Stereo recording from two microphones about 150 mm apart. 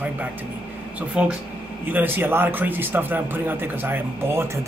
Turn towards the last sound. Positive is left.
turn(degrees=-15)  # may be behind; listen again after turning